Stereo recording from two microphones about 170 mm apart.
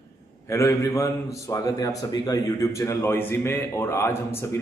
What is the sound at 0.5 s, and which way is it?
A man's voice, 15° left (ahead or behind).